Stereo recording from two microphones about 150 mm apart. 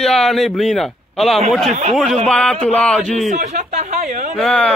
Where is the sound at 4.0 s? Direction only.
65° right (ahead or behind).